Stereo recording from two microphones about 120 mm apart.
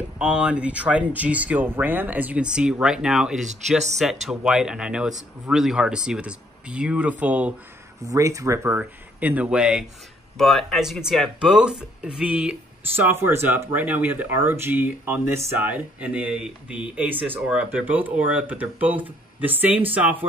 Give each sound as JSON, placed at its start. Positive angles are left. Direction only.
{"t": 0.2, "sound": "speech", "side_deg": -10}
{"t": 3.4, "sound": "speech", "side_deg": -70}
{"t": 4.0, "sound": "speech", "side_deg": -5}
{"t": 8.0, "sound": "speech", "side_deg": -25}